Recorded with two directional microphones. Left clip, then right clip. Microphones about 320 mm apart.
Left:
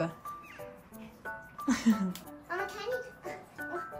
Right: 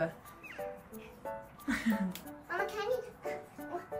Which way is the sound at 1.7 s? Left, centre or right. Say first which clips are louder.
Left 4 dB; centre.